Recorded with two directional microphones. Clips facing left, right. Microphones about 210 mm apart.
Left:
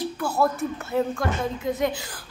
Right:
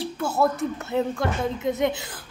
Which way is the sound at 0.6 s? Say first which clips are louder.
Even; 20° right (ahead or behind).